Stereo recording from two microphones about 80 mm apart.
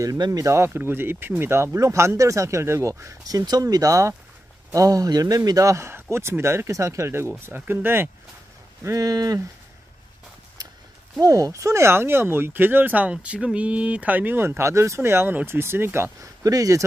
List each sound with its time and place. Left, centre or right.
0.0 s speech: right
0.7 s speech: right
8.8 s speech: right
11.1 s speech: right
16.4 s speech: right